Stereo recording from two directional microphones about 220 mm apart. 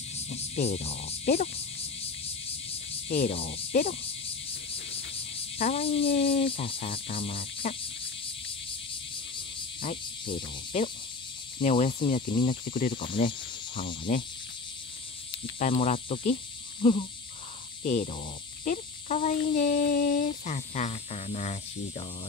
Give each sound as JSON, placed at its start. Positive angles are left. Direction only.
{"t": 0.1, "sound": "cricket", "side_deg": 30}
{"t": 2.9, "sound": "speech", "side_deg": 25}
{"t": 5.3, "sound": "speech", "side_deg": 25}
{"t": 10.2, "sound": "speech", "side_deg": 25}
{"t": 12.4, "sound": "speech", "side_deg": 35}
{"t": 12.9, "sound": "speech", "side_deg": 25}
{"t": 15.6, "sound": "speech", "side_deg": 30}
{"t": 17.8, "sound": "speech", "side_deg": 30}